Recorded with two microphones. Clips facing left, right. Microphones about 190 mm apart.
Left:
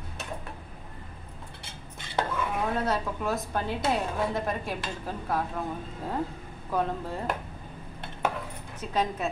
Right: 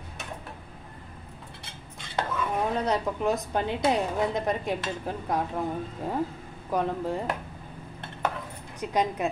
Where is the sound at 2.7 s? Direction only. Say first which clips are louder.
Right 2 dB; 15° right (ahead or behind).